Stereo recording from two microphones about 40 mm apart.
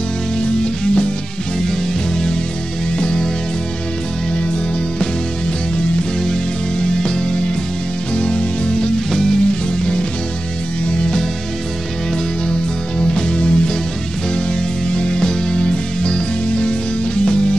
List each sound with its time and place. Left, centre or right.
0.4 s music: left
3.0 s music: left
6.8 s music: centre
9.1 s music: centre
9.5 s music: left
13.0 s music: left
14.9 s music: left